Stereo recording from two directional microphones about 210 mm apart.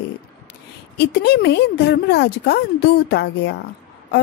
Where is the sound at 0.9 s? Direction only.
50° left (ahead or behind).